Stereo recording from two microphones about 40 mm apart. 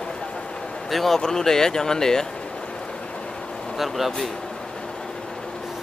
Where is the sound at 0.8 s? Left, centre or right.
Centre.